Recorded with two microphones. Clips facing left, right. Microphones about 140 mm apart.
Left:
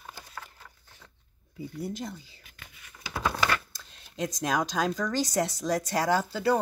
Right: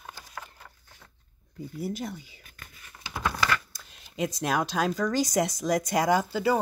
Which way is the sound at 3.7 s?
10° right (ahead or behind).